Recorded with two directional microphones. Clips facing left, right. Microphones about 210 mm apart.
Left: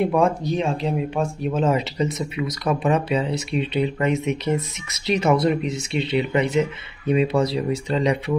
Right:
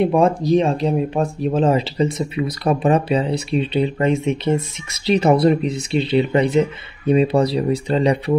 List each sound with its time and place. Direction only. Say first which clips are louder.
0.0 s speech: right 4 dB; 30° right (ahead or behind)